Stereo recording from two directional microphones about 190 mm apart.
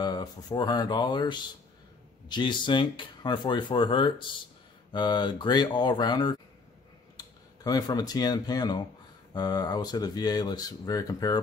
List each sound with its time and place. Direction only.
0.0 s speech: 20° left (ahead or behind)